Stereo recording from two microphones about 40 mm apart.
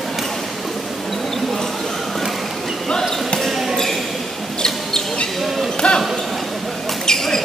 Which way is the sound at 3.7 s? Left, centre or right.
Centre.